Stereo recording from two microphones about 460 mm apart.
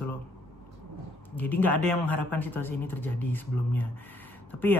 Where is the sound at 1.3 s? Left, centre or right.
Centre.